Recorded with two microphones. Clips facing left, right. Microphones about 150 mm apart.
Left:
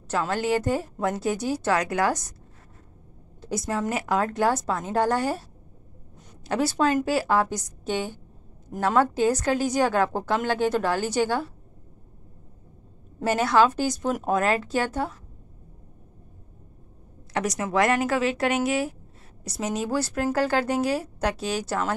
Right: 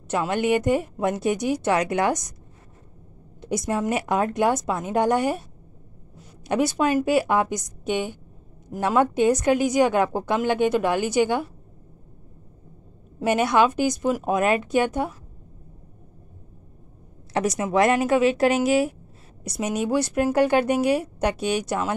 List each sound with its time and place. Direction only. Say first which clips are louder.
0.1 s a woman's voice: right 3 dB; 15° right (ahead or behind)
3.3 s a woman's voice: right 3 dB; 20° right (ahead or behind)
6.4 s a woman's voice: right 1 dB; 15° right (ahead or behind)
13.2 s a woman's voice: right 1 dB; 15° right (ahead or behind)
17.3 s a woman's voice: right 3 dB; 25° right (ahead or behind)